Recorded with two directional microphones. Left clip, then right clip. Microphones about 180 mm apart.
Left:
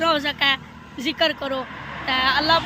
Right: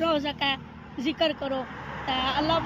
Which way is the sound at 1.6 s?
55° right (ahead or behind).